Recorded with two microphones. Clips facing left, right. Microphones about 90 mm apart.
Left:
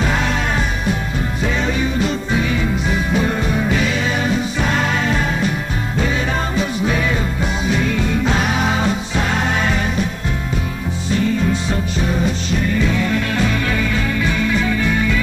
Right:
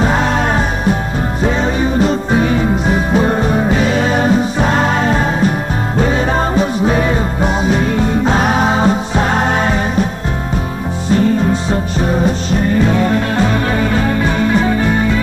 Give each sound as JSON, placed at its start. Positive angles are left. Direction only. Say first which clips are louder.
{"t": 1.4, "sound": "music", "louder": "right 5 dB", "side_deg": -35}
{"t": 11.1, "sound": "music", "louder": "right 5 dB", "side_deg": -40}